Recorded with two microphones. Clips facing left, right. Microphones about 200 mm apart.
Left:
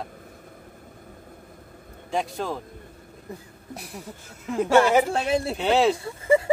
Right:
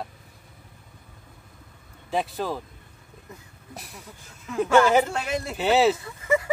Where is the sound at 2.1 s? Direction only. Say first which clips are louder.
Even; centre (ahead or behind).